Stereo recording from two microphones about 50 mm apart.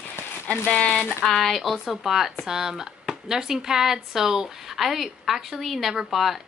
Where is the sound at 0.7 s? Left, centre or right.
Left.